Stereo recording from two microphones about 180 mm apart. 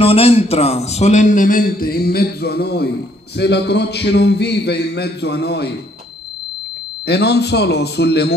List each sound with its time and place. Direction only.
0.0 s a man's voice: 30° left (ahead or behind); by 5.8 s 65° left (ahead or behind)
7.1 s speech: 65° left (ahead or behind)